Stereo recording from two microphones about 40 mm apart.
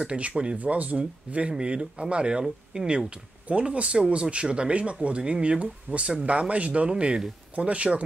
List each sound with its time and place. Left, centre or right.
0.0 s speech: right
0.6 s speech: right; by 3.1 s centre
3.4 s speech: right